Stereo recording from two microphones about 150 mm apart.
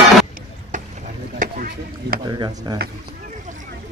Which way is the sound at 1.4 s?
70° right (ahead or behind).